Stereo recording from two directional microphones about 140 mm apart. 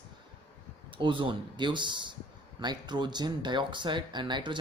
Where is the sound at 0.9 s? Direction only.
35° right (ahead or behind).